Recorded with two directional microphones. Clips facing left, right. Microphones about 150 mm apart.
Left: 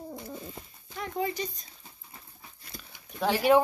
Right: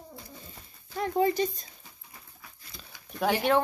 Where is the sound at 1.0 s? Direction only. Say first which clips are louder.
Right 6 dB; 40° right (ahead or behind).